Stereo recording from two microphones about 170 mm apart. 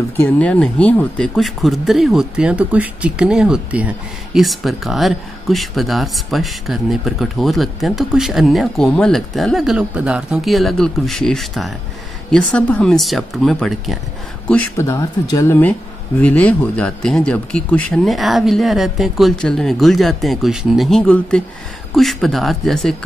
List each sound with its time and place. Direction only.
0.2 s speech: 10° left (ahead or behind)
14.5 s speech: 15° left (ahead or behind)